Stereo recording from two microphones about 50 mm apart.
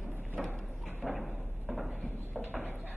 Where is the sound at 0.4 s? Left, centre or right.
Centre.